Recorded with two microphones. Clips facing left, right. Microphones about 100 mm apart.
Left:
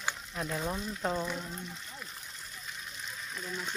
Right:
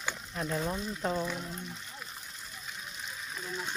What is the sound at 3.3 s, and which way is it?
Speech, 15° right (ahead or behind).